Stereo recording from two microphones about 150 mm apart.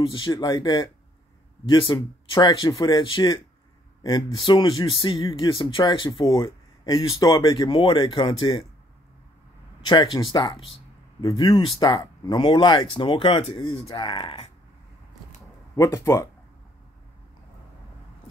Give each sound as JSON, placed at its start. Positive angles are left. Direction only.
{"t": 0.1, "sound": "speech", "side_deg": 30}
{"t": 9.8, "sound": "speech", "side_deg": 30}
{"t": 15.7, "sound": "speech", "side_deg": 20}